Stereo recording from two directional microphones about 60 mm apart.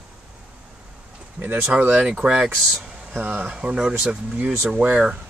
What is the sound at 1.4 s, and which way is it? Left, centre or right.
Speech, right.